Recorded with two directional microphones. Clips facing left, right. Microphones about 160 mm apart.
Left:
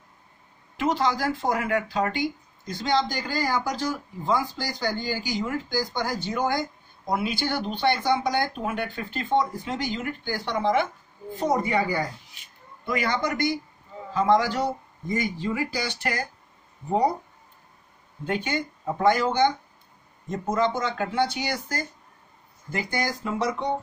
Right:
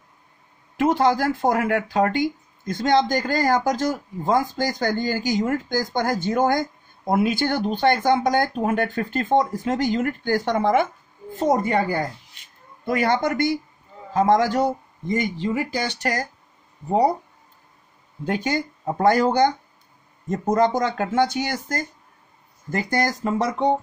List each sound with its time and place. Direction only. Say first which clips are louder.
0.7 s speech: right 6 dB; 50° right (ahead or behind)
15.3 s speech: right 4 dB; 25° right (ahead or behind)
16.0 s speech: right 4 dB; 40° right (ahead or behind)
18.2 s speech: right 4 dB; 40° right (ahead or behind)